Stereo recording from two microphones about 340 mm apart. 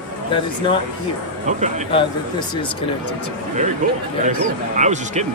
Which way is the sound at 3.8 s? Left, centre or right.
Right.